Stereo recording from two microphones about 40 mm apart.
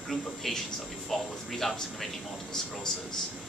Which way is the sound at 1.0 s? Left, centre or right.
Centre.